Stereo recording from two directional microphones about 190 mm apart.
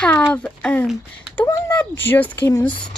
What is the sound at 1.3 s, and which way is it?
Speech, 15° left (ahead or behind).